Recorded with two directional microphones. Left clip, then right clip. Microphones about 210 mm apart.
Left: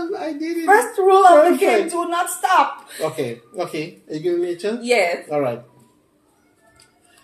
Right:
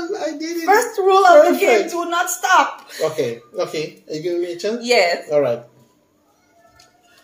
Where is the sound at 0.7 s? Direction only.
10° right (ahead or behind).